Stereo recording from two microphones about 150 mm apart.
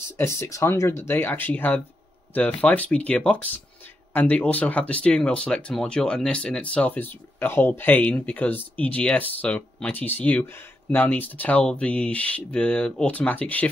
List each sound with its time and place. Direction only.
0.2 s speech: 20° left (ahead or behind)